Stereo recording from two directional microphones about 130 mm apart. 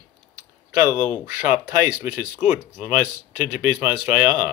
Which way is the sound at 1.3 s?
75° left (ahead or behind).